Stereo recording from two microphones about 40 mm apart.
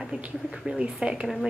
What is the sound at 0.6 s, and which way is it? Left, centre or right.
Speech, centre.